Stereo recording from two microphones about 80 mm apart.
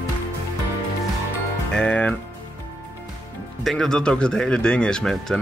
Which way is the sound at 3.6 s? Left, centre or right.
Centre.